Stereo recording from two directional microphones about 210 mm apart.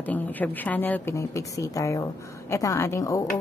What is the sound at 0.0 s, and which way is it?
A woman's voice, 10° left (ahead or behind).